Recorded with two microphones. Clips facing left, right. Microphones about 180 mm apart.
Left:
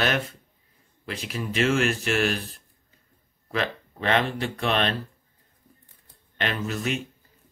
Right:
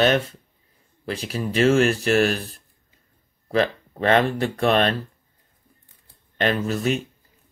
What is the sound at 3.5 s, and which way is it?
Speech, 40° right (ahead or behind).